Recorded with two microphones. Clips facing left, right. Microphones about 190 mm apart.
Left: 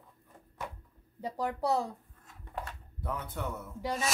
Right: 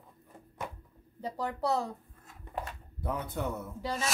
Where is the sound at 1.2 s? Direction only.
10° left (ahead or behind).